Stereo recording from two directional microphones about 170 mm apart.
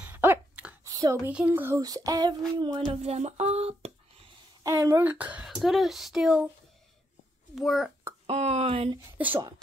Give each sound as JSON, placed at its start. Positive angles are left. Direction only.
{"t": 0.0, "sound": "a sound", "side_deg": -10}
{"t": 0.8, "sound": "a sound", "side_deg": -20}
{"t": 1.3, "sound": "speech", "side_deg": -10}
{"t": 2.9, "sound": "speech", "side_deg": -35}
{"t": 4.6, "sound": "speech", "side_deg": -15}
{"t": 7.5, "sound": "speech", "side_deg": 0}
{"t": 8.3, "sound": "speech", "side_deg": -40}